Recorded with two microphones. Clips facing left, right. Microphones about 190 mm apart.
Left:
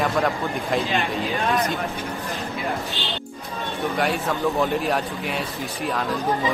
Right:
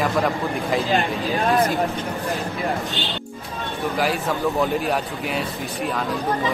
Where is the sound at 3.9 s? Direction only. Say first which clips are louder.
Right 1 dB; centre (ahead or behind).